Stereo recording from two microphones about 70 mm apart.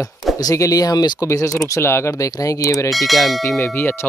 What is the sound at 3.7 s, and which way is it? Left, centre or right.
Speech, left.